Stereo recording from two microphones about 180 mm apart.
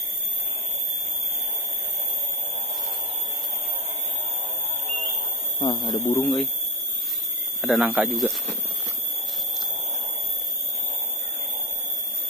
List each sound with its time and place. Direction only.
5.6 s speech: 25° left (ahead or behind)
6.2 s speech: centre (ahead or behind)
7.6 s speech: centre (ahead or behind)